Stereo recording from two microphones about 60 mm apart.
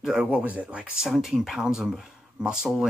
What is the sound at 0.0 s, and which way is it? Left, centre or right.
Speech, centre.